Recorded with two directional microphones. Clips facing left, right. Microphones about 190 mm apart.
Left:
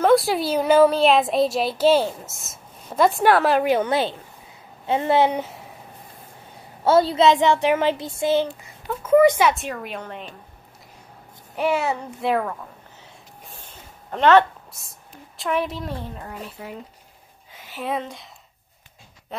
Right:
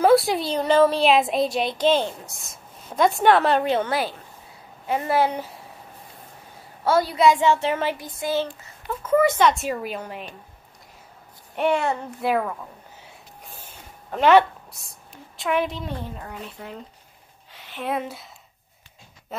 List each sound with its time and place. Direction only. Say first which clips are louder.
0.0 s a child's voice: even; centre (ahead or behind)
3.6 s speech: left 3 dB; 10° left (ahead or behind)
4.8 s speech: left 3 dB; 25° left (ahead or behind)
6.8 s speech: left 3 dB; 25° left (ahead or behind)
9.0 s speech: left 3 dB; 15° left (ahead or behind)
9.5 s a child's voice: right 1 dB; 5° right (ahead or behind)
11.5 s a child's voice: even; centre (ahead or behind)
14.1 s a woman's voice: even; 5° right (ahead or behind)